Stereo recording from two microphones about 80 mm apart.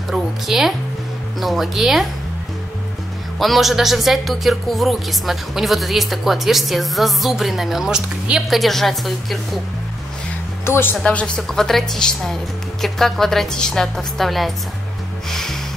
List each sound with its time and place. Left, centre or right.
0.1 s music: centre
1.4 s speech: centre
3.3 s speech: centre
10.6 s speech: left
11.1 s speech: centre